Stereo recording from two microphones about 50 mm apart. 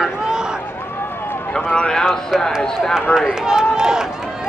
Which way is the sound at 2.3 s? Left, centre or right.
Centre.